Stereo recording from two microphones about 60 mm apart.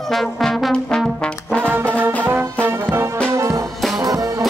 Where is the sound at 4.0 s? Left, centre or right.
Right.